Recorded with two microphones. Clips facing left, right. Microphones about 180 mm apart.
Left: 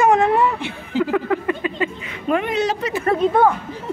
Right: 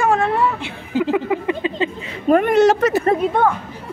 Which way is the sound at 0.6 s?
15° right (ahead or behind).